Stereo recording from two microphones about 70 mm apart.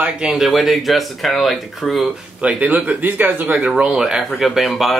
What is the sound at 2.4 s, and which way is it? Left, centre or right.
Speech, centre.